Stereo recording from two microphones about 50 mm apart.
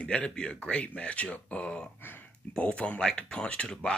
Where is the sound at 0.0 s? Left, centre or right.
Left.